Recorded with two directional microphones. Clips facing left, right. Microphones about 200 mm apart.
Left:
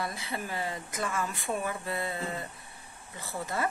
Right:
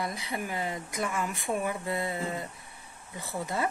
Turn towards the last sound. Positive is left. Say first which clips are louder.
# right 2 dB
turn(degrees=-20)  # may be behind; listen again after turning